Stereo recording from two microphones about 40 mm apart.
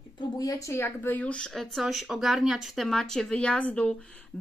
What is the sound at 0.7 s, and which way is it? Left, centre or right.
Speech, left.